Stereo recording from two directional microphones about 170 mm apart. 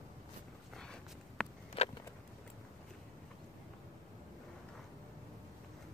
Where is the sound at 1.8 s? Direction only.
35° left (ahead or behind).